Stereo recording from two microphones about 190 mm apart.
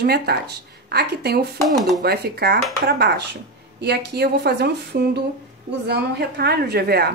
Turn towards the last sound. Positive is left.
turn(degrees=-55)  # may be behind; listen again after turning